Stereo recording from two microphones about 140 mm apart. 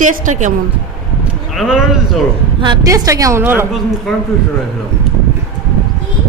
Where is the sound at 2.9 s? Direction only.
25° right (ahead or behind).